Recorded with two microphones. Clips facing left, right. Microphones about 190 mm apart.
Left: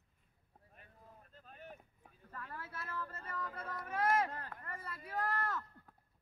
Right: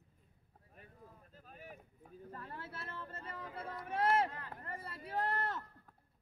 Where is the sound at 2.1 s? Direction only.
30° right (ahead or behind).